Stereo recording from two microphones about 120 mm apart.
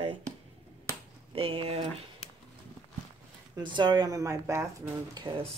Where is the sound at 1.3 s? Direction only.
50° right (ahead or behind).